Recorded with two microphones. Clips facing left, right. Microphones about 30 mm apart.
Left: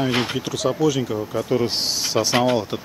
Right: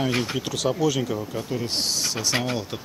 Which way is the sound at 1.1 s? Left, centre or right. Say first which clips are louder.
Left 7 dB; centre.